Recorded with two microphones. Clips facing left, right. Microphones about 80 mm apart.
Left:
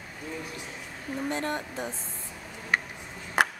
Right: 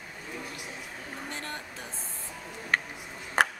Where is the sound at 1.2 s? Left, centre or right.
Left.